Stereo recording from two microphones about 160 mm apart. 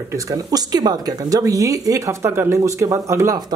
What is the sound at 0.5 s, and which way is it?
Speech, 25° right (ahead or behind).